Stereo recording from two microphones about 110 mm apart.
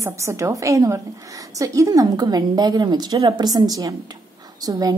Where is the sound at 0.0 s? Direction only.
25° right (ahead or behind).